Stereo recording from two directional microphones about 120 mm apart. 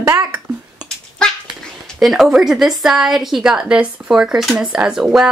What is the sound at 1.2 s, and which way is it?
Dog, 5° left (ahead or behind).